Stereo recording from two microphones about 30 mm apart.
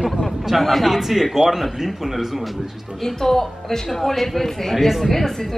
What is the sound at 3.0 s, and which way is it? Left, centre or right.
A woman's voice, centre.